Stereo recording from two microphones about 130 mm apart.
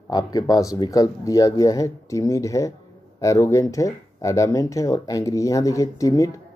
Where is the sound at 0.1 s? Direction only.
30° left (ahead or behind).